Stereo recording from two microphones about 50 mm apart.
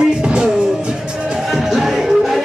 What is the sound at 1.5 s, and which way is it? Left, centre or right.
Music, centre.